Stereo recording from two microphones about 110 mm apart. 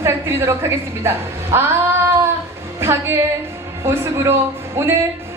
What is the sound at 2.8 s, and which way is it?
A woman's voice, 25° right (ahead or behind).